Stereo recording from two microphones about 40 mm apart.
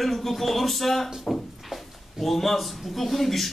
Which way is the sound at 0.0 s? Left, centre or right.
Centre.